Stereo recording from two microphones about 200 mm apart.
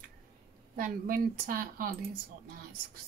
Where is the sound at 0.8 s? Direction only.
45° right (ahead or behind).